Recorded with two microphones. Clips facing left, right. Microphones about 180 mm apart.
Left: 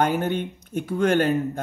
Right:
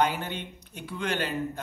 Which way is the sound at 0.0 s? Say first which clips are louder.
Left 6 dB; 50° left (ahead or behind).